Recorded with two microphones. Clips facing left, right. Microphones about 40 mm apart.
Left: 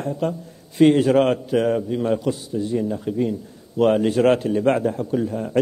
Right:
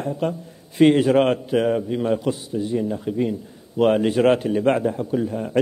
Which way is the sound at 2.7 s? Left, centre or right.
Centre.